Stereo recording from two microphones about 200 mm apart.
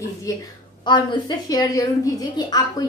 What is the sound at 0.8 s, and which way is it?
A woman's voice, 20° left (ahead or behind).